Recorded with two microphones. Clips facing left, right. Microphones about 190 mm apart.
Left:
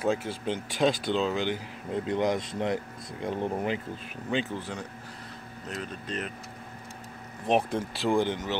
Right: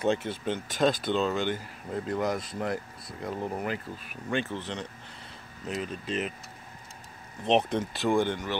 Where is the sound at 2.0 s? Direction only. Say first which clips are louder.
Left 2 dB; 25° left (ahead or behind).